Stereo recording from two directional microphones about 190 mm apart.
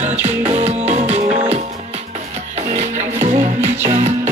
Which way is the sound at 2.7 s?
35° right (ahead or behind).